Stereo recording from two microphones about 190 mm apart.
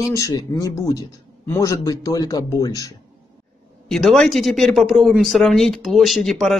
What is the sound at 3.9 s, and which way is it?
Speech, centre (ahead or behind).